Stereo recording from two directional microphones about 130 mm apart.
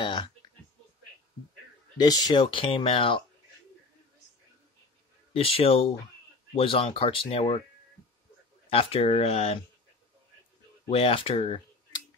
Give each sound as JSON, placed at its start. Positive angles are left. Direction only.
{"t": 0.0, "sound": "a sound", "side_deg": 35}
{"t": 2.0, "sound": "speech", "side_deg": 30}
{"t": 5.3, "sound": "speech", "side_deg": 45}
{"t": 8.6, "sound": "speech", "side_deg": 45}
{"t": 10.9, "sound": "speech", "side_deg": 50}